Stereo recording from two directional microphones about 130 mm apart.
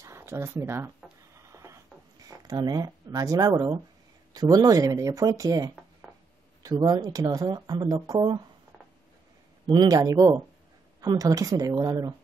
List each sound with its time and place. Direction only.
0.0 s speech: 20° right (ahead or behind)
1.3 s a sound: 20° right (ahead or behind)
4.3 s speech: 30° right (ahead or behind)
6.8 s speech: 30° right (ahead or behind)
9.7 s speech: 30° right (ahead or behind)